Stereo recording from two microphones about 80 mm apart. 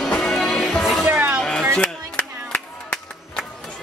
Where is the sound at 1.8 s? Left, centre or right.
Left.